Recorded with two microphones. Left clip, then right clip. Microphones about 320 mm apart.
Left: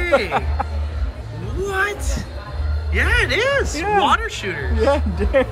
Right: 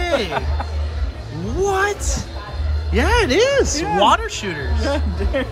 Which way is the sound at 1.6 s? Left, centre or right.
Centre.